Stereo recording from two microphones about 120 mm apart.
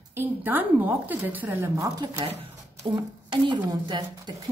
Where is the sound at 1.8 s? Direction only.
35° right (ahead or behind).